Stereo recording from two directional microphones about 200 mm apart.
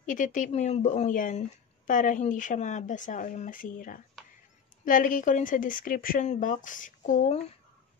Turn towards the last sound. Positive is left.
turn(degrees=40)  # may be behind; listen again after turning